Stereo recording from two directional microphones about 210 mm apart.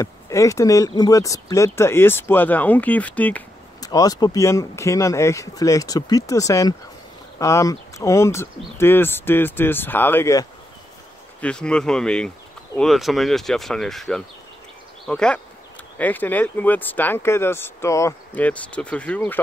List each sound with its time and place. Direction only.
0.0 s speech: 15° left (ahead or behind)
3.8 s speech: 15° left (ahead or behind)
11.4 s speech: 5° left (ahead or behind)